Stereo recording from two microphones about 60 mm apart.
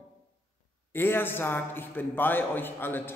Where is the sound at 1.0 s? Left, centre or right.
Left.